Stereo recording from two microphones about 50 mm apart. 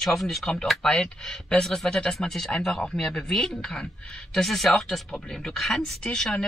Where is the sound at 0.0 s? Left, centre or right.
Centre.